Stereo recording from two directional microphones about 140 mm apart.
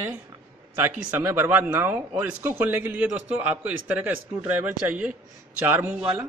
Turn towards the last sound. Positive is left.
turn(degrees=-10)  # may be behind; listen again after turning